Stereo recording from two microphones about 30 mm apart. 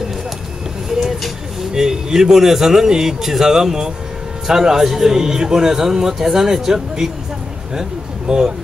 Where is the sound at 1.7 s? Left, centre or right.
Centre.